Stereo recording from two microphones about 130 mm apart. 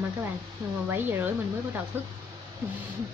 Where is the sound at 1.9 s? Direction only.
15° right (ahead or behind).